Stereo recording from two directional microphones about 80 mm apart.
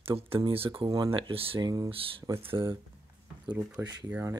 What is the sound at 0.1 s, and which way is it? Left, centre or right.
Speech, right.